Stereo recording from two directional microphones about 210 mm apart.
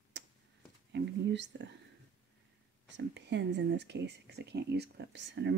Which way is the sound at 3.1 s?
55° right (ahead or behind).